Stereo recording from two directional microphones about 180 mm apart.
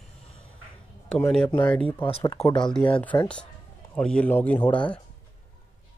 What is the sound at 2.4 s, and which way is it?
Speech, 25° left (ahead or behind).